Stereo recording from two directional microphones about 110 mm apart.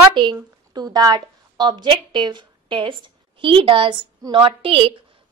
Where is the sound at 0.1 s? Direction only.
45° right (ahead or behind).